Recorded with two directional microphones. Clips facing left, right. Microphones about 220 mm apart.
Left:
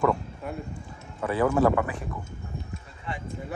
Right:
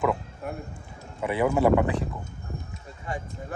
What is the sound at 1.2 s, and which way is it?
Speech, 20° right (ahead or behind).